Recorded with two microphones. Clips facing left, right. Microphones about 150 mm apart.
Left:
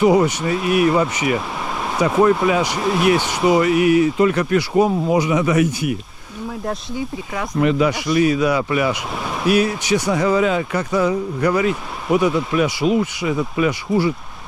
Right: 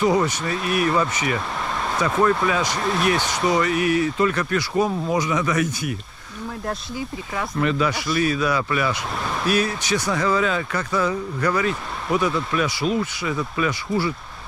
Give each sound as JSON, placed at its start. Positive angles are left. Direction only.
{"t": 0.0, "sound": "speech", "side_deg": 20}
{"t": 4.7, "sound": "speech", "side_deg": 65}
{"t": 5.2, "sound": "speech", "side_deg": 25}
{"t": 7.6, "sound": "speech", "side_deg": 20}